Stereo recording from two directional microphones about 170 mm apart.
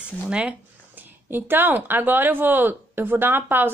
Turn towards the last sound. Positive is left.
turn(degrees=-10)  # may be behind; listen again after turning